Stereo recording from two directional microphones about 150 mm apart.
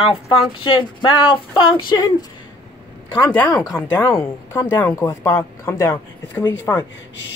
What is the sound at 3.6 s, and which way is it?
Speech, 15° left (ahead or behind).